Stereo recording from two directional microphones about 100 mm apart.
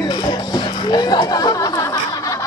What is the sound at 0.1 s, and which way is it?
Chatter, 45° left (ahead or behind).